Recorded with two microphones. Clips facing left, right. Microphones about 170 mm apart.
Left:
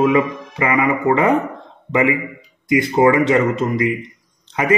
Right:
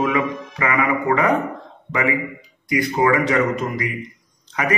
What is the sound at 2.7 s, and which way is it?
A man's voice, 25° left (ahead or behind).